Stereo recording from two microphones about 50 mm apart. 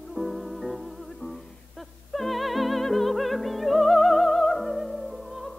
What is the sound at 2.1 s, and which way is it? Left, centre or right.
Music, centre.